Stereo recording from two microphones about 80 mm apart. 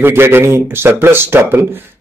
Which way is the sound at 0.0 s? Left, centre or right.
Right.